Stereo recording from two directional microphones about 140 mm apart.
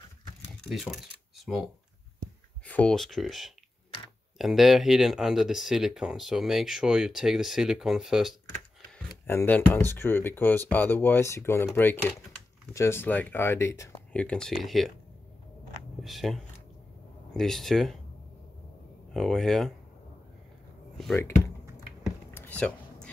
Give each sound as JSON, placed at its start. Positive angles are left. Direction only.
{"t": 0.7, "sound": "speech", "side_deg": 0}
{"t": 2.6, "sound": "speech", "side_deg": 10}
{"t": 9.3, "sound": "speech", "side_deg": 15}
{"t": 14.2, "sound": "speech", "side_deg": 5}
{"t": 16.0, "sound": "speech", "side_deg": 0}
{"t": 19.1, "sound": "speech", "side_deg": 0}
{"t": 22.3, "sound": "a sound", "side_deg": 15}